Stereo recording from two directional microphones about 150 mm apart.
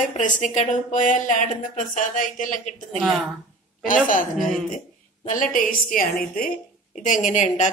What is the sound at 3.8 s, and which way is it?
Speech, 65° left (ahead or behind).